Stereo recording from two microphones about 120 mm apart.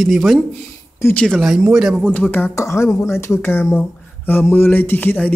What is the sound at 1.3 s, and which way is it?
Speech, 5° right (ahead or behind).